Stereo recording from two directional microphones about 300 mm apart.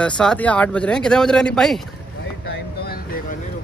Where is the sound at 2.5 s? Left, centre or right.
Left.